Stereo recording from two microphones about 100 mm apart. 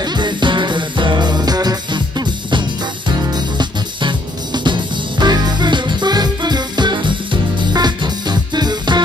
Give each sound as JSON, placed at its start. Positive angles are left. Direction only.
{"t": 0.0, "sound": "music", "side_deg": -45}